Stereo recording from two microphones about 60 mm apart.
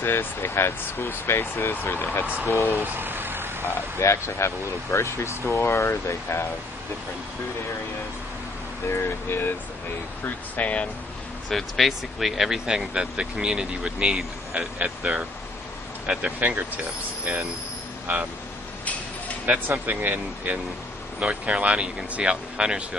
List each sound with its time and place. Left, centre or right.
0.0 s speech: left
2.8 s vehicle: right
4.0 s speech: left
8.9 s speech: left
10.2 s speech: left
11.4 s speech: centre; by 18.2 s right
19.9 s speech: right